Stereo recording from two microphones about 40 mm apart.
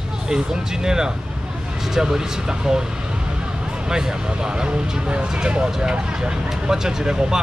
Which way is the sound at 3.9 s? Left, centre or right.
Centre.